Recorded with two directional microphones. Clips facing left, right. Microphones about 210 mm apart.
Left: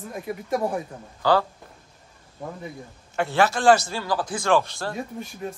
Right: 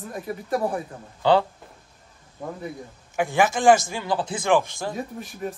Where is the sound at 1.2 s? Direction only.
25° right (ahead or behind).